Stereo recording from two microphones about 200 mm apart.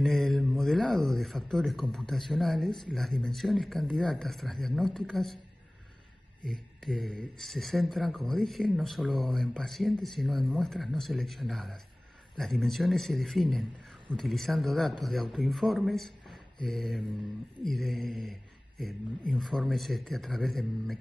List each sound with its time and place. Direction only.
0.0 s speech: centre (ahead or behind)
6.4 s speech: 5° left (ahead or behind)